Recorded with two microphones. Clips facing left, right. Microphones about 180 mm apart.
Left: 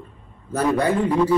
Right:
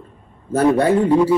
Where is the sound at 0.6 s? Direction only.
30° right (ahead or behind).